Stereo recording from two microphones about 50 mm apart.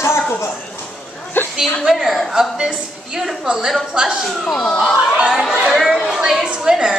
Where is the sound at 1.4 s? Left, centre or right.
Left.